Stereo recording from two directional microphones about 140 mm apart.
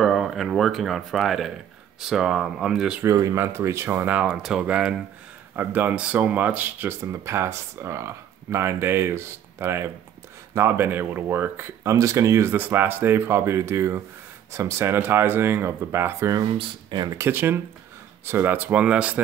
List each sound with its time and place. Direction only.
0.0 s speech: centre (ahead or behind)
3.0 s speech: 20° right (ahead or behind)
16.5 s speech: 35° right (ahead or behind)
17.2 s speech: 15° right (ahead or behind)